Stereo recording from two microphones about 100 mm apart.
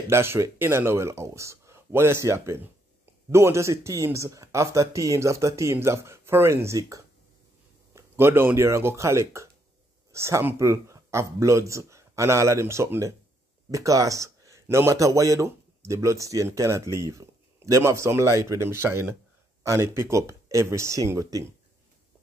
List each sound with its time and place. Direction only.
0.1 s a man's voice: 25° right (ahead or behind)